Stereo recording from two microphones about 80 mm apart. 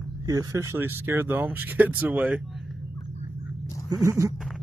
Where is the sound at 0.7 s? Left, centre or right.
Right.